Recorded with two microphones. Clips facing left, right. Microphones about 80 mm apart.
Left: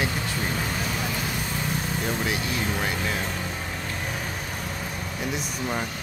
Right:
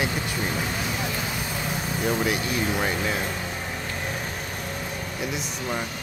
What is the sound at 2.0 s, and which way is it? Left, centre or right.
Speech, centre.